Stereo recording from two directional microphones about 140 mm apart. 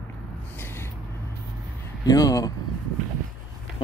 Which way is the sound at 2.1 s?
25° left (ahead or behind).